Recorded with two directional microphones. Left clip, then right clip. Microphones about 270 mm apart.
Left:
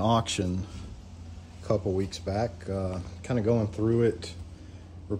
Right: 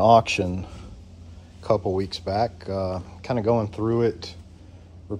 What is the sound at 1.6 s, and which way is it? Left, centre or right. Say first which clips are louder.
Speech: right 5 dB; right.